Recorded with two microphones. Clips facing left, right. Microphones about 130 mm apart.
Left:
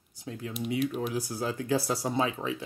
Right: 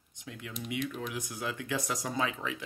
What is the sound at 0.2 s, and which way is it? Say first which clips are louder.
Speech: left 6 dB; 35° left (ahead or behind).